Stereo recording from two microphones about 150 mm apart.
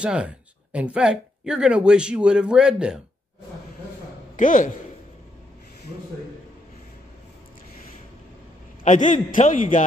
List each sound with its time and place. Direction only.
0.0 s speech: 5° right (ahead or behind)
4.4 s a man's voice: 60° left (ahead or behind)
8.8 s a man's voice: 55° left (ahead or behind)